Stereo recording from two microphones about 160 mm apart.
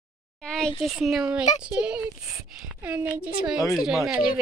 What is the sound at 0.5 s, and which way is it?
Speech, 5° left (ahead or behind).